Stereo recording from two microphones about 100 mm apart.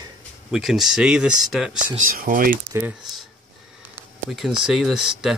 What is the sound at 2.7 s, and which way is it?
Speech, 20° right (ahead or behind).